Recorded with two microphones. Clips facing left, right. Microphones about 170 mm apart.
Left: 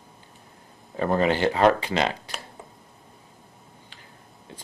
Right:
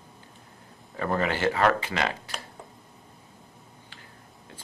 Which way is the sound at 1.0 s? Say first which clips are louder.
Left 4 dB; 25° left (ahead or behind).